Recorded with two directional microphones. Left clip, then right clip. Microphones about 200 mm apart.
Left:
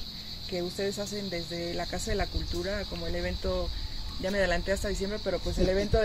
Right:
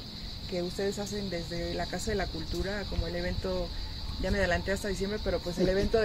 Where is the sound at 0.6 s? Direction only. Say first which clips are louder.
Even; 10° left (ahead or behind).